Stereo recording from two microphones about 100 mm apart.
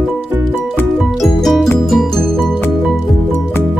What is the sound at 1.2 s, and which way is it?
Music, centre (ahead or behind).